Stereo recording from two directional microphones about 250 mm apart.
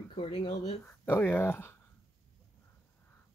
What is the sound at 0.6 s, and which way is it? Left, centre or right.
Speech, centre.